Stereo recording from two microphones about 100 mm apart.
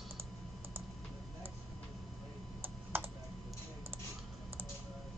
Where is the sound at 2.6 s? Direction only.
20° right (ahead or behind).